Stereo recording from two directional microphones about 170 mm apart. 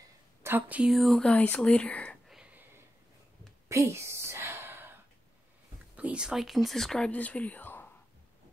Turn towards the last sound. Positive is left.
turn(degrees=10)  # may be behind; listen again after turning